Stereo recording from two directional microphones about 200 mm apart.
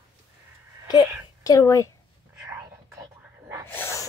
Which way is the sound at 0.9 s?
20° left (ahead or behind).